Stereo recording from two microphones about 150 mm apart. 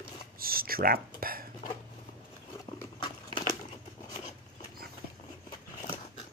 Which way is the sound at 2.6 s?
30° left (ahead or behind).